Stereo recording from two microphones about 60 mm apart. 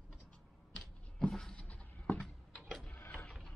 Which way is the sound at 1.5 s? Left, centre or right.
Left.